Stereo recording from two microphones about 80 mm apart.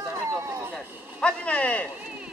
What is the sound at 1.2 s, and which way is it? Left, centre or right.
Speech, centre.